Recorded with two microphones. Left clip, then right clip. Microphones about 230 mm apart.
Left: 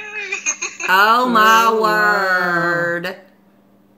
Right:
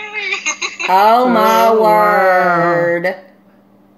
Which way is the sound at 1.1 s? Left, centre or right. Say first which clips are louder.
Right 1 dB; centre.